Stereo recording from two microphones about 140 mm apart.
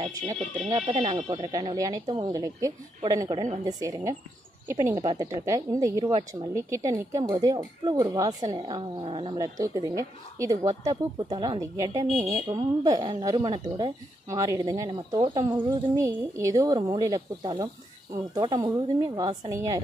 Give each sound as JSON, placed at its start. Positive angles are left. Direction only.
{"t": 0.0, "sound": "speech", "side_deg": -40}
{"t": 1.4, "sound": "speech", "side_deg": -30}
{"t": 9.4, "sound": "speech", "side_deg": -25}